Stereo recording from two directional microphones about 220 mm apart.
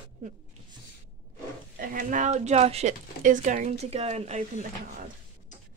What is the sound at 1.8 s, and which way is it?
A woman's voice, 40° right (ahead or behind).